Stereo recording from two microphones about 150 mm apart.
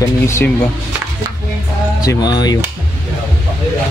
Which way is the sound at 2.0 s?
25° left (ahead or behind).